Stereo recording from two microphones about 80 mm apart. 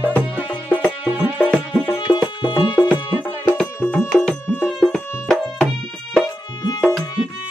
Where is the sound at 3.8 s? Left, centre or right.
Centre.